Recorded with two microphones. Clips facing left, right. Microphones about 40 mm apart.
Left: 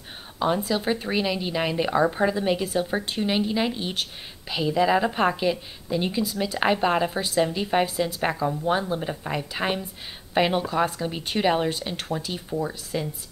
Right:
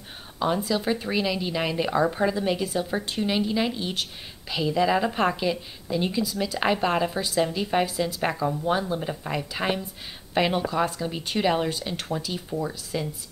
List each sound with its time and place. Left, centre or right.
0.4 s a woman's voice: centre